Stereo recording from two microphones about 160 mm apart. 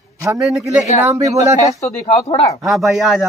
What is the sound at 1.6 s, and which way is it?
Speech, 45° left (ahead or behind).